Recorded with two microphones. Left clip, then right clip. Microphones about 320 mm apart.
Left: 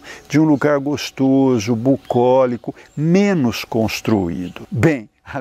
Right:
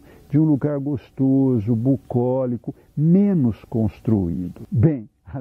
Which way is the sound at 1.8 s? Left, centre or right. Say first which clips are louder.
Left 6 dB; left.